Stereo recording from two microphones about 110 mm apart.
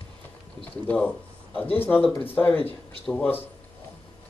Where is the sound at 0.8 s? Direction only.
15° left (ahead or behind).